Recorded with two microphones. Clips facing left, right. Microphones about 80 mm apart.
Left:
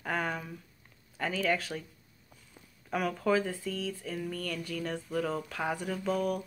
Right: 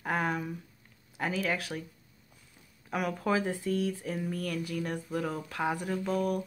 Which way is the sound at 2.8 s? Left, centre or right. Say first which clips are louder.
Left 1 dB; centre.